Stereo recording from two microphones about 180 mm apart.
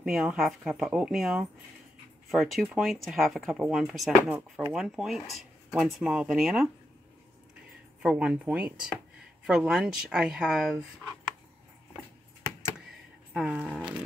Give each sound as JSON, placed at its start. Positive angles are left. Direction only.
{"t": 0.0, "sound": "speech", "side_deg": -5}
{"t": 8.0, "sound": "speech", "side_deg": -5}
{"t": 13.3, "sound": "speech", "side_deg": -5}